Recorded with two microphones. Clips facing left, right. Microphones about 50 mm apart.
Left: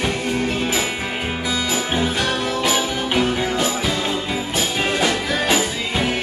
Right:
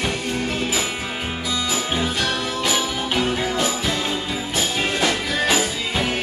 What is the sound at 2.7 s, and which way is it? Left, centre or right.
Music, centre.